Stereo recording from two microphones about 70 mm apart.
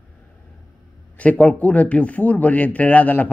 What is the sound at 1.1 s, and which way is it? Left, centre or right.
A man's voice, left.